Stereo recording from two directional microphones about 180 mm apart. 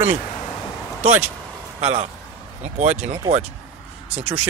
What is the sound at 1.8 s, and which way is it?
A man's voice, 35° right (ahead or behind).